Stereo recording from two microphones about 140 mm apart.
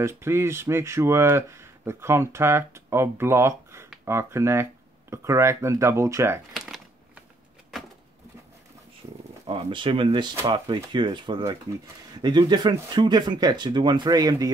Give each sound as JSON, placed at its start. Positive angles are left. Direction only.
{"t": 0.0, "sound": "speech", "side_deg": -20}
{"t": 6.5, "sound": "shuffling cards", "side_deg": -5}
{"t": 7.7, "sound": "a sound", "side_deg": 0}
{"t": 9.5, "sound": "speech", "side_deg": -35}